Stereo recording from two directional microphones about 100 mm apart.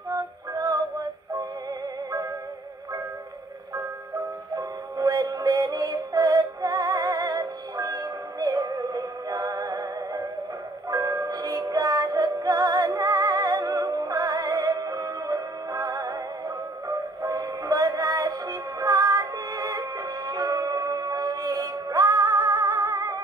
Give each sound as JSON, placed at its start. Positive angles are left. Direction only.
{"t": 0.1, "sound": "music", "side_deg": -35}
{"t": 4.6, "sound": "synthetic singing", "side_deg": -40}
{"t": 10.9, "sound": "music", "side_deg": -35}